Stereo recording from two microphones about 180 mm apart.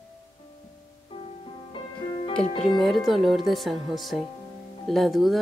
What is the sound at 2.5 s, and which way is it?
Speech, 30° left (ahead or behind).